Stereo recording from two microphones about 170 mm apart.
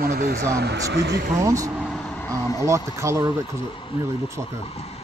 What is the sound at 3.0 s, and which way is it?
Speech, 15° right (ahead or behind).